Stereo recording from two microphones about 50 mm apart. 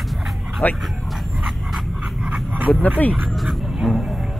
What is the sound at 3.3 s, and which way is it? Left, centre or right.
Speech, centre.